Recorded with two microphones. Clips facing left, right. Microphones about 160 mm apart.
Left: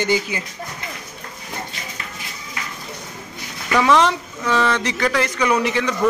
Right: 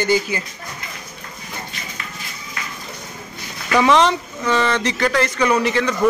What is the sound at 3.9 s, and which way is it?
Speech, 5° left (ahead or behind).